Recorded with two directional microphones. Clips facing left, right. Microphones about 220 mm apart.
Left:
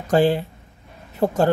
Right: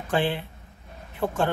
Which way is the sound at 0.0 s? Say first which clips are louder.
Left 8 dB; 40° left (ahead or behind).